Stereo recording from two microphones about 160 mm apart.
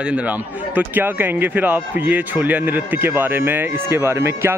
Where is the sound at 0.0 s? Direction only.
10° right (ahead or behind).